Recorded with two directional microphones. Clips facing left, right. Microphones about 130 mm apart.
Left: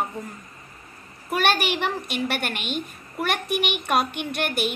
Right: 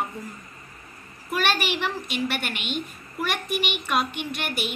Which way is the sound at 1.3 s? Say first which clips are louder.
Left 2 dB; 60° left (ahead or behind).